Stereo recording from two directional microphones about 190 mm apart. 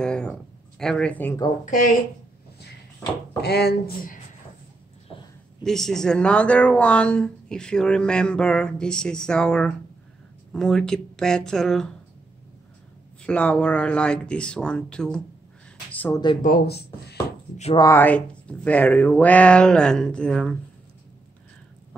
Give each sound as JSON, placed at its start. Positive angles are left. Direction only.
{"t": 0.0, "sound": "a sound", "side_deg": 5}
{"t": 1.7, "sound": "speech", "side_deg": 45}
{"t": 3.3, "sound": "speech", "side_deg": 60}
{"t": 5.6, "sound": "speech", "side_deg": 0}
{"t": 13.2, "sound": "speech", "side_deg": 5}
{"t": 15.9, "sound": "a sound", "side_deg": 10}
{"t": 16.4, "sound": "speech", "side_deg": 55}
{"t": 17.7, "sound": "speech", "side_deg": 15}